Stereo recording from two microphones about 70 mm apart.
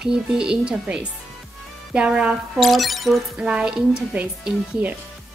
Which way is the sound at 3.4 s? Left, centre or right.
Centre.